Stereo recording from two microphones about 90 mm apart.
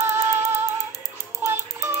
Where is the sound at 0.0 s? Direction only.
30° right (ahead or behind).